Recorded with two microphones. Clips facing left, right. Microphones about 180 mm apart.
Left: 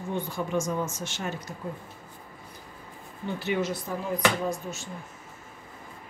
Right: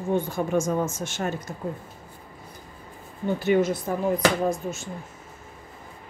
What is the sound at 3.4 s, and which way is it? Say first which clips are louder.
Speech: right 7 dB; 50° right (ahead or behind).